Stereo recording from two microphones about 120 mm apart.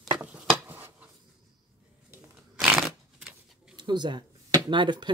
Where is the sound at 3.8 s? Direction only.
40° right (ahead or behind).